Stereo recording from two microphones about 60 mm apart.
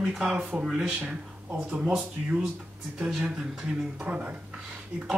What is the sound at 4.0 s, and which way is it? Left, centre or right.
Speech, right.